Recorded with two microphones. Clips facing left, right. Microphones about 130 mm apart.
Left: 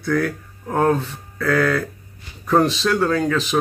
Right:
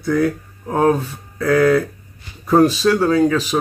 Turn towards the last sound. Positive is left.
turn(degrees=-10)  # may be behind; listen again after turning